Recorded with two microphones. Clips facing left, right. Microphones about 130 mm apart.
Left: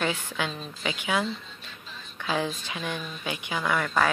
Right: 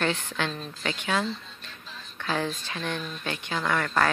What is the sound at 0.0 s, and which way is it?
Speech, 10° left (ahead or behind).